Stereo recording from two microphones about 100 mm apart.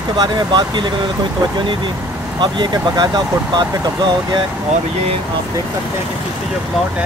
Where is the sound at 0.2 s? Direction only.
50° right (ahead or behind).